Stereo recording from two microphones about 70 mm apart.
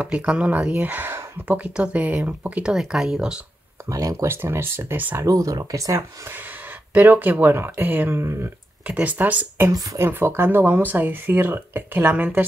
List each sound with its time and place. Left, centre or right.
0.0 s speech: centre
2.7 s speech: centre
3.9 s speech: right
4.3 s speech: right
5.2 s speech: right
6.9 s speech: right
8.2 s speech: right
8.8 s speech: right
9.7 s speech: right
10.0 s speech: right